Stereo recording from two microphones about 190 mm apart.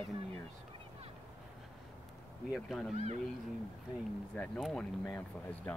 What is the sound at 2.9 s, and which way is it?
Speech, 35° right (ahead or behind).